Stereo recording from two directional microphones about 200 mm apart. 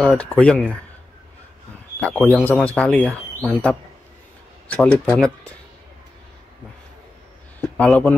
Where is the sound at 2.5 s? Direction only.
5° left (ahead or behind).